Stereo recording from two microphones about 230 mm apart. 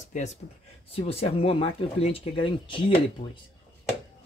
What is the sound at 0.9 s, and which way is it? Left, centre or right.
Speech, left.